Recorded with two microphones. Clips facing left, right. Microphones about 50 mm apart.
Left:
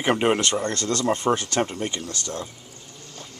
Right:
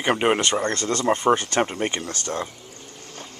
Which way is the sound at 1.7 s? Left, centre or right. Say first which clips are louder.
Right 3 dB; right.